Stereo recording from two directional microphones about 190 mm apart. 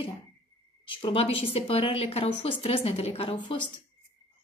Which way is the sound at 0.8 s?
30° left (ahead or behind).